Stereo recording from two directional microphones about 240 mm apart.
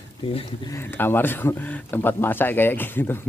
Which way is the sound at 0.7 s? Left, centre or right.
Centre.